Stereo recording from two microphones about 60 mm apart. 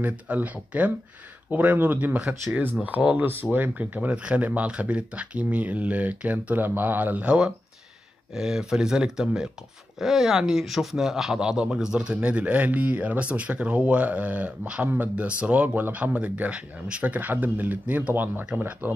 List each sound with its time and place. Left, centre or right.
0.0 s speech: right